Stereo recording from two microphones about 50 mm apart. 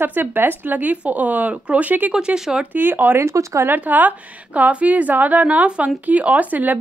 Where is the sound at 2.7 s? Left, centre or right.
Right.